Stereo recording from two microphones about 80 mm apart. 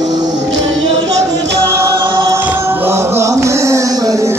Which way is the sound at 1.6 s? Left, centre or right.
Right.